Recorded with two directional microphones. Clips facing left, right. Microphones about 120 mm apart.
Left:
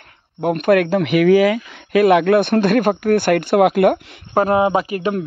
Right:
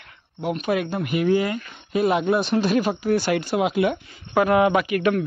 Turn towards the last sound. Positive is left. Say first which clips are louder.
# left 1 dB
turn(degrees=25)  # may be behind; listen again after turning